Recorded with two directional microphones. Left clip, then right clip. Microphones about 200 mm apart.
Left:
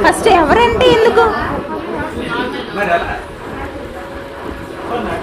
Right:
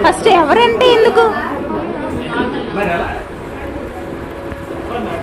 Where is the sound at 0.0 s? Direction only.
15° left (ahead or behind).